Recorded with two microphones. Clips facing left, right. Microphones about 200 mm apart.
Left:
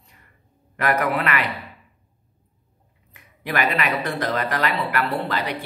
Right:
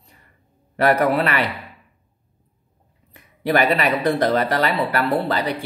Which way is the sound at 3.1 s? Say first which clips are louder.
Right 7 dB; 35° right (ahead or behind).